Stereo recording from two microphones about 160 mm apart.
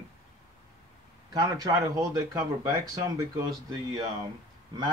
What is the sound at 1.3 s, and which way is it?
Speech, 20° right (ahead or behind).